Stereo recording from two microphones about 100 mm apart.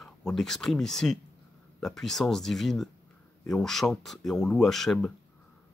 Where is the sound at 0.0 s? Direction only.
5° left (ahead or behind).